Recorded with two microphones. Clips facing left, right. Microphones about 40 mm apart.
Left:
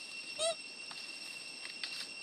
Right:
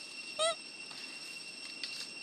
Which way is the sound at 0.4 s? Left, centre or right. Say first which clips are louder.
Right 3 dB; right.